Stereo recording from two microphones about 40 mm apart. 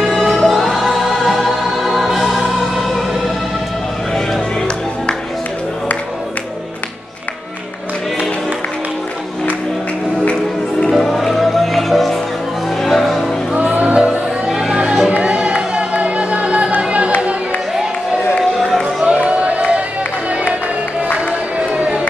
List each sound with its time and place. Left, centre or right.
0.1 s music: centre
4.1 s music: centre
10.9 s music: centre
13.6 s music: right
14.5 s music: centre
15.2 s music: right
18.4 s run: centre
19.0 s a sound: right
21.3 s music: right